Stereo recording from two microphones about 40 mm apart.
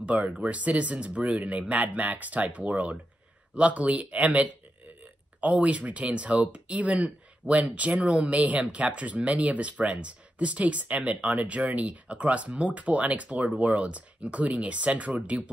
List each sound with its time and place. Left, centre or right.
0.0 s speech: right
1.7 s speech: right